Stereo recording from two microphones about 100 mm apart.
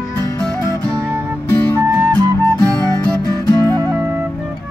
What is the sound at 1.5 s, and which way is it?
Music, 20° left (ahead or behind).